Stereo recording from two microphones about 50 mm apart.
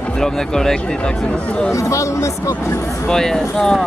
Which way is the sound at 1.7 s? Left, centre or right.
Left.